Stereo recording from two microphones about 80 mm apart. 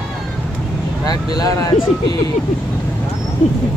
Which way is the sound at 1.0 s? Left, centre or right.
Left.